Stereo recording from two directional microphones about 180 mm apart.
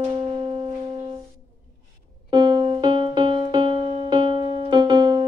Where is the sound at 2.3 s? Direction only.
25° right (ahead or behind).